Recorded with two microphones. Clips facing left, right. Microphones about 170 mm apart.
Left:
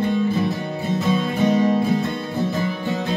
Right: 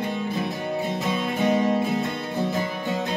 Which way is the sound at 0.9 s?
15° right (ahead or behind).